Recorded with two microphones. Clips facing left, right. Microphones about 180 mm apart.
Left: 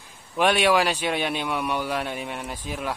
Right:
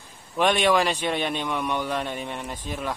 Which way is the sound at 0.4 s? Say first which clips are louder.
Even; 10° left (ahead or behind).